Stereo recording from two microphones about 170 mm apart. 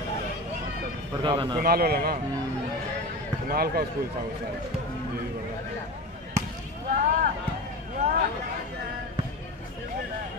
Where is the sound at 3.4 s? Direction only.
65° right (ahead or behind).